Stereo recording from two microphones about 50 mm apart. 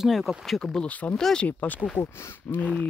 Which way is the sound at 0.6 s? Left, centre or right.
Centre.